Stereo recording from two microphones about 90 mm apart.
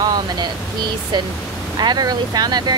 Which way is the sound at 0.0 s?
50° right (ahead or behind).